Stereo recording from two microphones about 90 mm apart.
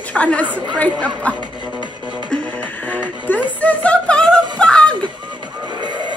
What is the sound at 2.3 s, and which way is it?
Music, 15° left (ahead or behind).